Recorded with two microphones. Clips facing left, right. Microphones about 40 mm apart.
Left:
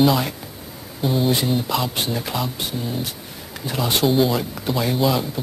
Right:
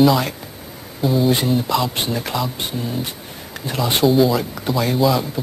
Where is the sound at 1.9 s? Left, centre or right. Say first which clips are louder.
Right 2 dB; centre.